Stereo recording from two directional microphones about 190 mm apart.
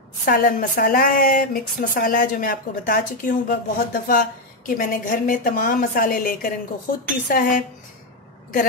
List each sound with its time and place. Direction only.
0.2 s speech: 50° left (ahead or behind)